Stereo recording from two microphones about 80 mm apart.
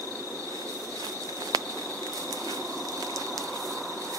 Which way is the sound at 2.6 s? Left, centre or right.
Centre.